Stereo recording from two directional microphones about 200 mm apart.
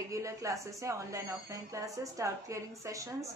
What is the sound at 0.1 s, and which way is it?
A woman's voice, 15° right (ahead or behind).